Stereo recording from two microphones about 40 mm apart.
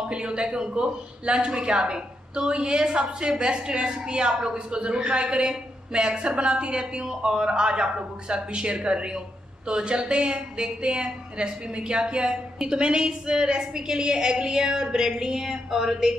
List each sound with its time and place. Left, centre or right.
0.1 s a woman's voice: right